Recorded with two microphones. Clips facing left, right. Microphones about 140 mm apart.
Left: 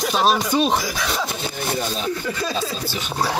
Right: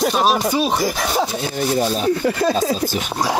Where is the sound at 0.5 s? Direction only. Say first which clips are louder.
Even; 5° right (ahead or behind).